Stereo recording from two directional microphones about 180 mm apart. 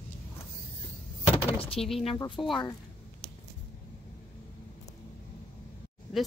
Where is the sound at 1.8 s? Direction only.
Centre (ahead or behind).